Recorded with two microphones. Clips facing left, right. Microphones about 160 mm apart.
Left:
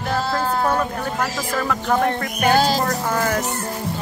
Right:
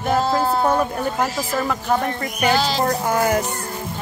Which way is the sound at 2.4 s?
50° left (ahead or behind).